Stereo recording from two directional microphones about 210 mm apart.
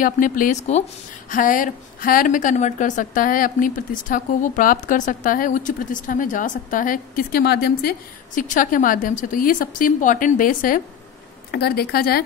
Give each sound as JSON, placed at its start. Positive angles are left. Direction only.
{"t": 0.0, "sound": "a woman's voice", "side_deg": 40}